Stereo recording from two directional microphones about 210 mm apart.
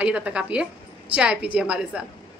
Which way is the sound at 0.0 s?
5° right (ahead or behind).